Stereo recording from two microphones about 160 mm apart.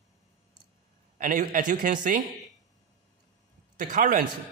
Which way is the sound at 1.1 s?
55° right (ahead or behind).